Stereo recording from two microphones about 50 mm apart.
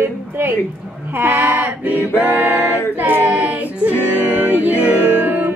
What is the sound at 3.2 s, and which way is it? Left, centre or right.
Child singing, right.